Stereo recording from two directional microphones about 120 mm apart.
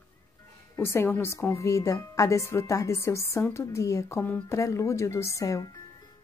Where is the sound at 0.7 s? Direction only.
20° left (ahead or behind).